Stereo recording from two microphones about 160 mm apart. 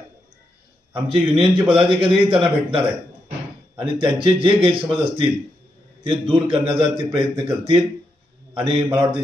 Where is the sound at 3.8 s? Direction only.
35° right (ahead or behind).